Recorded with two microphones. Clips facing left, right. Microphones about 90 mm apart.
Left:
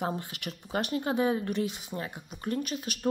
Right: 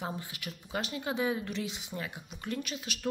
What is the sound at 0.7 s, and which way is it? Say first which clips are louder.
Speech: left 5 dB; 45° left (ahead or behind).